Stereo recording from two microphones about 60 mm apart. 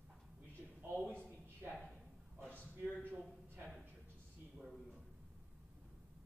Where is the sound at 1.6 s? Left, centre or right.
Right.